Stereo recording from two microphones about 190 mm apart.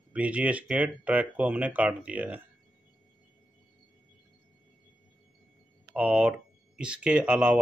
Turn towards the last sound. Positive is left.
turn(degrees=-5)  # may be behind; listen again after turning